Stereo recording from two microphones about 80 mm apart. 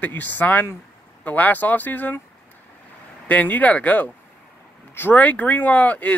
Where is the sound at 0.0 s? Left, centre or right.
Left.